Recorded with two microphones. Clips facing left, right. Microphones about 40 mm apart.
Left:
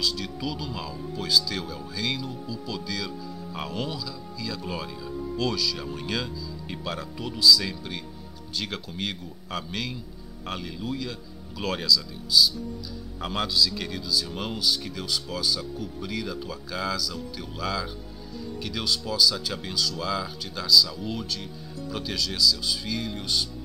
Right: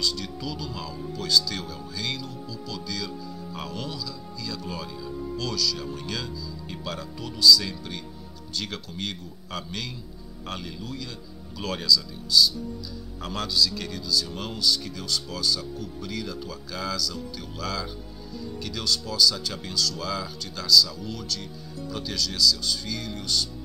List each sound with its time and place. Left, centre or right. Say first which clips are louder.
0.0 s speech: left 1 dB; centre
3.5 s music: left 3 dB; centre
4.5 s speech: left 1 dB; centre
21.7 s speech: even; centre